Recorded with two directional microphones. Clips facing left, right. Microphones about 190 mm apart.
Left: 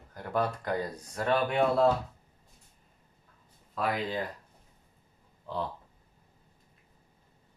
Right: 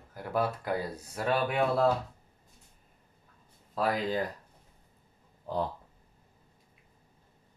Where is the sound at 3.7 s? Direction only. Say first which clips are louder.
Right 2 dB; 35° right (ahead or behind).